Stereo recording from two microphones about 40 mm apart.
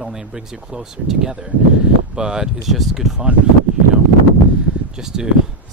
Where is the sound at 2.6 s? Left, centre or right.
Centre.